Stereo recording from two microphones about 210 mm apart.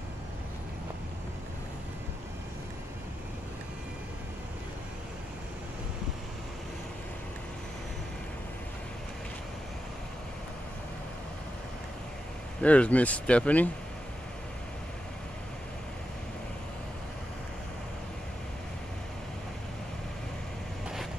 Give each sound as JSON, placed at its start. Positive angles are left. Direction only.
{"t": 12.5, "sound": "speech", "side_deg": 5}